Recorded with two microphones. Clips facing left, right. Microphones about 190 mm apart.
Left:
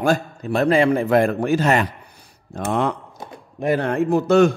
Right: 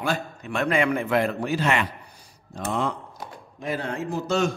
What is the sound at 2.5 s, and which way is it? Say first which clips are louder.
A man's voice: left 5 dB; 60° left (ahead or behind).